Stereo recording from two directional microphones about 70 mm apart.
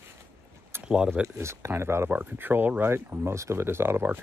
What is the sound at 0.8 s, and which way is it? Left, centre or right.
Speech, centre.